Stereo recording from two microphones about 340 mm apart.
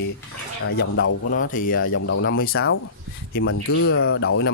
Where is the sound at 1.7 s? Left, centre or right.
Left.